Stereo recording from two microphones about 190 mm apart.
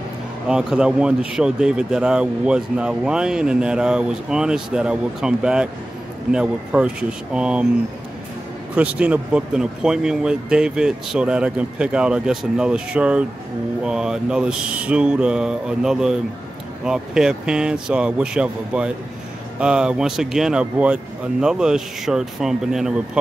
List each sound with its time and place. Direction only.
0.5 s speech: 5° right (ahead or behind)
8.7 s speech: 5° right (ahead or behind)